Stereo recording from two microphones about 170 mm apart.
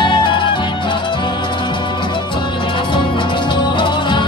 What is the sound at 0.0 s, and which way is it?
Music, 30° left (ahead or behind).